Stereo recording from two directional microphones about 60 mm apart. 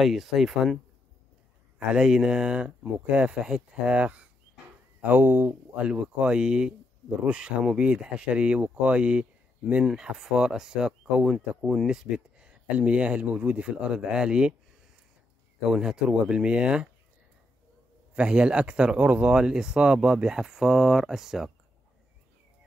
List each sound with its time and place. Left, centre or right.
0.0 s speech: centre
1.9 s speech: centre
5.0 s speech: right
5.8 s speech: centre
15.7 s speech: centre
18.1 s speech: centre